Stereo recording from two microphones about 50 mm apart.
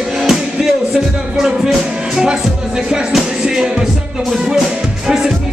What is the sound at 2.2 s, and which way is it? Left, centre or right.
Music, centre.